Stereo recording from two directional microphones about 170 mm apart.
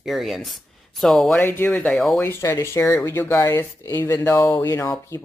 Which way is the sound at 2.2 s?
15° left (ahead or behind).